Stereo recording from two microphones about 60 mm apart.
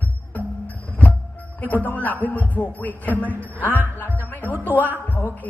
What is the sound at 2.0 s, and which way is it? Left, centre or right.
Speech, left.